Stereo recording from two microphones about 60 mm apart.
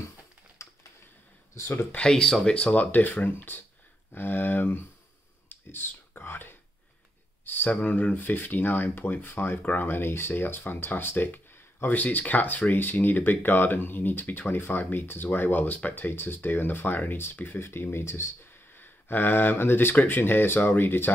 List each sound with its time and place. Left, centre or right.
0.6 s typing: left
1.5 s speech: left
2.0 s speech: centre
2.5 s speech: left
5.5 s a sound: left
7.4 s speech: left
17.9 s speech: left